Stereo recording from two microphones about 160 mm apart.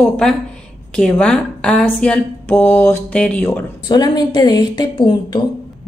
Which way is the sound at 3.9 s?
25° left (ahead or behind).